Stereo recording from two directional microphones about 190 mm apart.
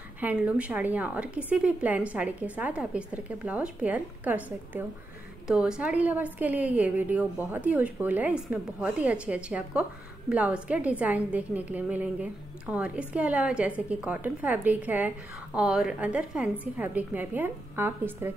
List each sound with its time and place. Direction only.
0.2 s a woman's voice: 5° right (ahead or behind)